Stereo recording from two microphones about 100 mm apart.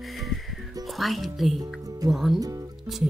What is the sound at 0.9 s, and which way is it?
Speech, centre (ahead or behind).